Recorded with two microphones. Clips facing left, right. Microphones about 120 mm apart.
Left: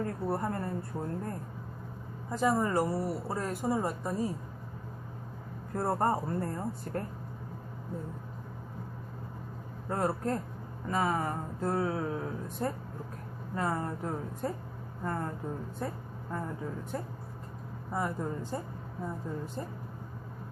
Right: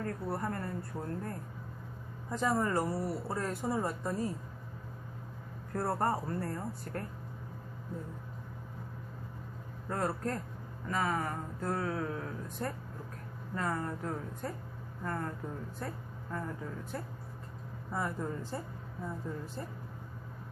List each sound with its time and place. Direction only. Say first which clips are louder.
0.0 s a woman's voice: left 4 dB; 20° left (ahead or behind)
5.8 s speech: left 3 dB; 20° left (ahead or behind)
9.8 s a woman's voice: left 3 dB; 25° left (ahead or behind)